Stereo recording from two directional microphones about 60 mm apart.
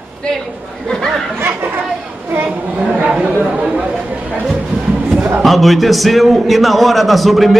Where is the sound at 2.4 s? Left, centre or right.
Right.